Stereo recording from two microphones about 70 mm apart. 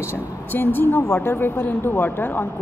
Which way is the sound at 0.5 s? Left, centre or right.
Left.